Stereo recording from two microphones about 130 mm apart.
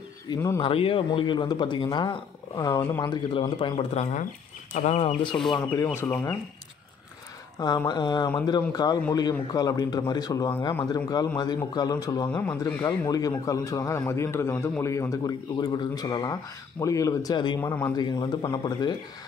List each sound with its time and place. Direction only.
0.6 s a man's voice: 45° left (ahead or behind)
3.9 s speech: 55° left (ahead or behind)
5.3 s a man's voice: 15° left (ahead or behind)
7.6 s a man's voice: 30° left (ahead or behind)
12.4 s speech: 15° left (ahead or behind)
13.1 s a man's voice: 30° left (ahead or behind)
17.6 s a man's voice: 20° left (ahead or behind)
17.9 s a man's voice: 35° left (ahead or behind)